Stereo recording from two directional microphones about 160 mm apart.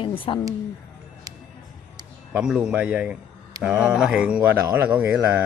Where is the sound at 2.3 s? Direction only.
5° right (ahead or behind).